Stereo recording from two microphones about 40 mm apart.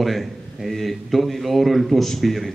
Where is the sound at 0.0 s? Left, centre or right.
Centre.